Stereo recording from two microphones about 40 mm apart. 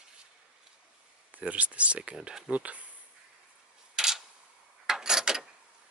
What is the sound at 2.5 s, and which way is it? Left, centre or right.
Speech, right.